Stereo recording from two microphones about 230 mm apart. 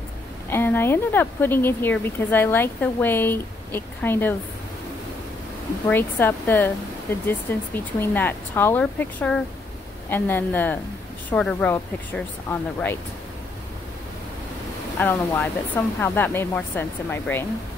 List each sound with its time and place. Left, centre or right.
0.5 s speech: centre
5.9 s speech: centre
15.0 s speech: centre